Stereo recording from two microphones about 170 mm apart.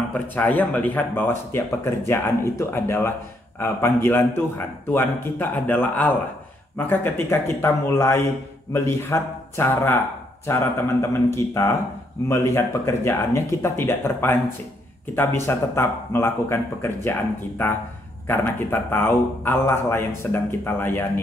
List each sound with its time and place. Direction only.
0.1 s speech: 10° left (ahead or behind)
18.2 s speech: 15° left (ahead or behind)